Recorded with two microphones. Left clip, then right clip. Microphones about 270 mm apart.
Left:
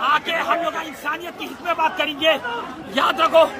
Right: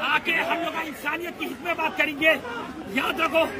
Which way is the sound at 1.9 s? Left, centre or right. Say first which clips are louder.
Left 2 dB; centre.